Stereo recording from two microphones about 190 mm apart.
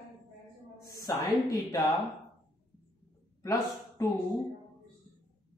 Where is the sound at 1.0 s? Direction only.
15° left (ahead or behind).